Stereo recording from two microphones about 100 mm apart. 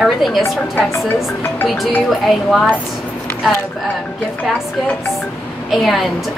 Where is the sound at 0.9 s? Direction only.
20° left (ahead or behind).